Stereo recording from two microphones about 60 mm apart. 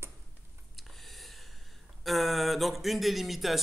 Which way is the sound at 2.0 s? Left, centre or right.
Centre.